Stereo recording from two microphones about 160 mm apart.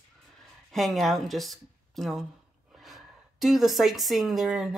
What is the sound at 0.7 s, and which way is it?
Speech, centre (ahead or behind).